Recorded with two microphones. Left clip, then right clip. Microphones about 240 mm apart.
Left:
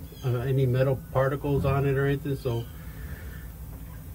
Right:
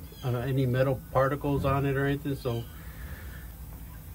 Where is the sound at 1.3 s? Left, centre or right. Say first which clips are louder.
Left 1 dB; right.